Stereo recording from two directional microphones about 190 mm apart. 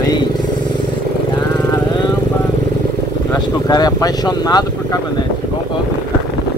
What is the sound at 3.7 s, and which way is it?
Speech, 20° left (ahead or behind).